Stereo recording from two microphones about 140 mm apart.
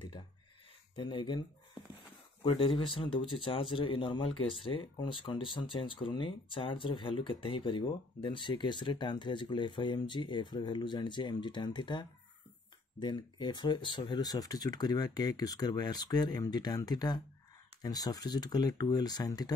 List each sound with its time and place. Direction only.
0.9 s speech: 35° left (ahead or behind)
2.4 s speech: 40° left (ahead or behind)